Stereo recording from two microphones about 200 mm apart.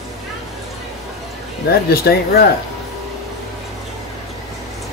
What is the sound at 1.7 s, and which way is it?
Speech, 50° left (ahead or behind).